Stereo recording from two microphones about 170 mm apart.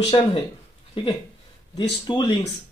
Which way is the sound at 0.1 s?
30° left (ahead or behind).